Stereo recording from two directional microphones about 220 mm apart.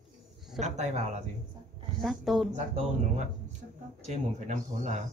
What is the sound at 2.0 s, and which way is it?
Speech, centre (ahead or behind).